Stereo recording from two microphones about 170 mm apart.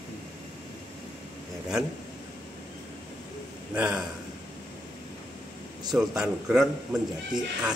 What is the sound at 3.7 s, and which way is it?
Speech, 5° right (ahead or behind).